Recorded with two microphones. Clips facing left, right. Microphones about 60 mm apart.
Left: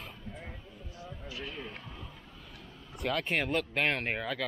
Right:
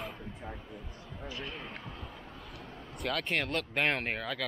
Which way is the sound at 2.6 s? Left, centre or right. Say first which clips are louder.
Right 5 dB; right.